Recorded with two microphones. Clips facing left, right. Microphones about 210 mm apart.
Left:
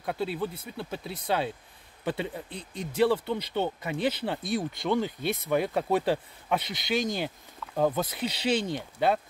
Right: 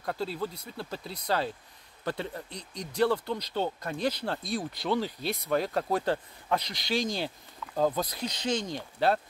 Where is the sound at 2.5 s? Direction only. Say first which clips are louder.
Left 3 dB; 55° left (ahead or behind).